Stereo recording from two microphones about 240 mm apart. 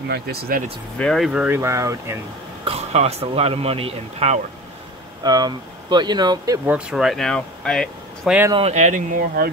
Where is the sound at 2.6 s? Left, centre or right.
Right.